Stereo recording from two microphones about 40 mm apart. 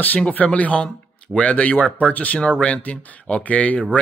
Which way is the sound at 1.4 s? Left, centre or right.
Left.